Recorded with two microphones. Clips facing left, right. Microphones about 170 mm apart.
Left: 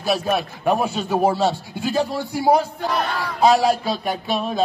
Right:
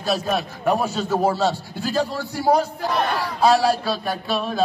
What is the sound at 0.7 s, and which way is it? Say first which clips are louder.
A man's voice: left 1 dB; 15° left (ahead or behind).